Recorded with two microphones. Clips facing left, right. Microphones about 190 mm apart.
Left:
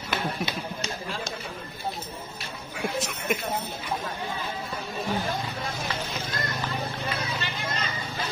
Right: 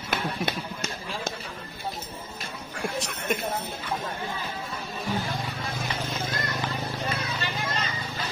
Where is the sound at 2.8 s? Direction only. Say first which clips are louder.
Left 1 dB; 5° left (ahead or behind).